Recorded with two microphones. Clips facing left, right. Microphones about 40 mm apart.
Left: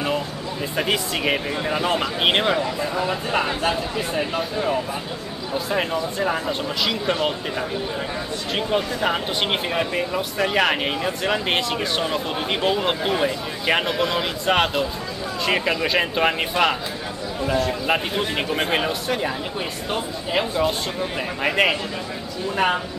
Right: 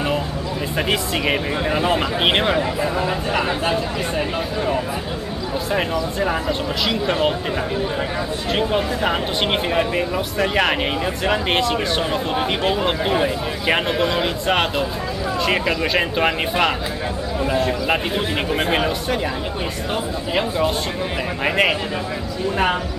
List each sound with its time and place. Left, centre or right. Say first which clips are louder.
0.7 s speech: right 1 dB; centre
8.5 s speech: right 2 dB; centre